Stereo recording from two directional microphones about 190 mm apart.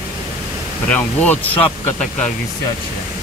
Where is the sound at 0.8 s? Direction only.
5° left (ahead or behind).